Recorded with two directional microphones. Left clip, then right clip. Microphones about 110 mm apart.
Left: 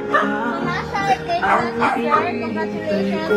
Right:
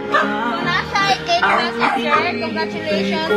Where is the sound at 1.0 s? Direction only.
25° right (ahead or behind).